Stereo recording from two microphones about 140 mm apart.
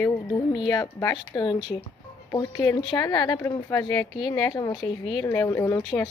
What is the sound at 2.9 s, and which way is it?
A woman's voice, 30° left (ahead or behind).